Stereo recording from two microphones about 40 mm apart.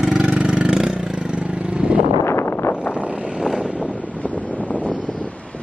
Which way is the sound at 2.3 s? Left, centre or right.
Left.